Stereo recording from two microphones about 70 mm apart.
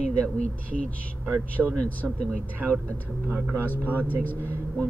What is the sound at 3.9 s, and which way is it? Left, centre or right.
Speech, left.